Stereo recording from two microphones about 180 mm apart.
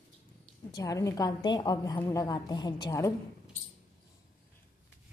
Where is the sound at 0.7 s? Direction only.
20° left (ahead or behind).